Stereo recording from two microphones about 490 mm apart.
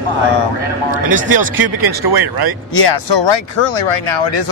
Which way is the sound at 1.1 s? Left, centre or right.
Right.